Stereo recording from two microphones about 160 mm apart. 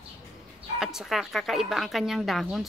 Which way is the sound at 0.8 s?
Centre (ahead or behind).